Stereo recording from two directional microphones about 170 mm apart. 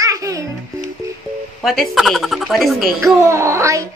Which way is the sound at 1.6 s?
Centre (ahead or behind).